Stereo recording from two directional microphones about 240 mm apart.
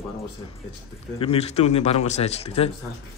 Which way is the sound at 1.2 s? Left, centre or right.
Left.